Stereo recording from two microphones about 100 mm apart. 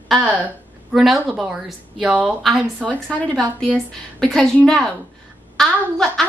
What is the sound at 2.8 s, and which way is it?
A woman's voice, 15° left (ahead or behind).